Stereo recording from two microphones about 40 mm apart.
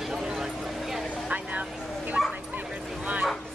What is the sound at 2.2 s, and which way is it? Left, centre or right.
Bow-wow, centre.